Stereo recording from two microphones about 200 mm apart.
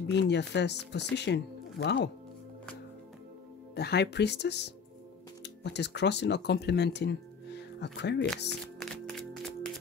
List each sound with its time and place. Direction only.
0.1 s speech: 60° left (ahead or behind)
3.7 s speech: 55° left (ahead or behind)
8.7 s music: 5° left (ahead or behind)